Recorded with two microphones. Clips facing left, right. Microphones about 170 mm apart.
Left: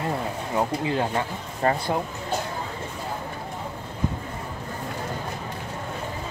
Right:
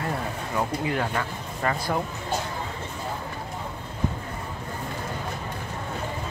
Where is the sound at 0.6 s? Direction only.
25° left (ahead or behind).